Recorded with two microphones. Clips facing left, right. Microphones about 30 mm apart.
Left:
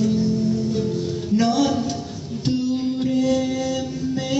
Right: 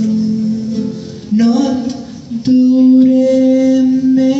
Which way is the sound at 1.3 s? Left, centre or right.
Right.